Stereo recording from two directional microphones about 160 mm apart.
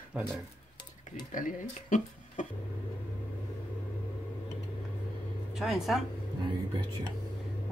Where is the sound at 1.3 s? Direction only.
55° left (ahead or behind).